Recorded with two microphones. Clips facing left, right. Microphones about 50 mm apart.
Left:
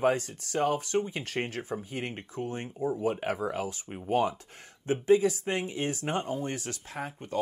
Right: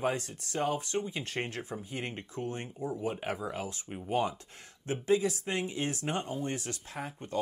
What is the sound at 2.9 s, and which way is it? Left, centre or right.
Speech, left.